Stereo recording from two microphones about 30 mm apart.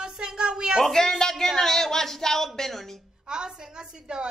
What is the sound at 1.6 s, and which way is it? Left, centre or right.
Music, centre.